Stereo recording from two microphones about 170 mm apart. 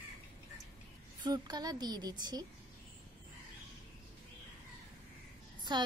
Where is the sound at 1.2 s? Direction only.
25° right (ahead or behind).